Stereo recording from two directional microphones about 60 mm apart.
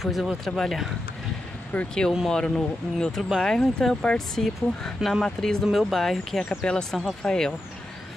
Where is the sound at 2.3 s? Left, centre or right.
Centre.